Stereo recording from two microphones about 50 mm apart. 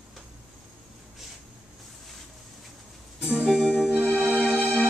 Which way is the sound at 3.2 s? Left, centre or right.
Centre.